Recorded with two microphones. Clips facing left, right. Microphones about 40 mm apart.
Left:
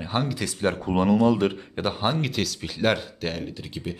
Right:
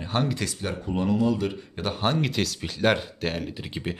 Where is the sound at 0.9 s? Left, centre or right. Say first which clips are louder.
Left 4 dB; left.